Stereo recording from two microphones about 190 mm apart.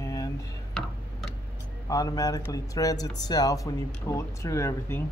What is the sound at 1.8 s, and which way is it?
Speech, 20° left (ahead or behind).